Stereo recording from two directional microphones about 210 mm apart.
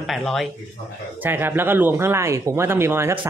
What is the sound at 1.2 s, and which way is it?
Speech, 10° right (ahead or behind).